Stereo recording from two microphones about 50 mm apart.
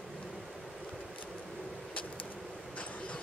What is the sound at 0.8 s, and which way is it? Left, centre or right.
Vehicle, centre.